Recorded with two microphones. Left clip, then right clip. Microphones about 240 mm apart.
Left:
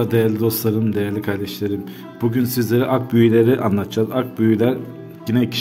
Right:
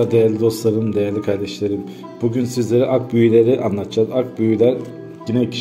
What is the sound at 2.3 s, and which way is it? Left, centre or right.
A man's voice, left.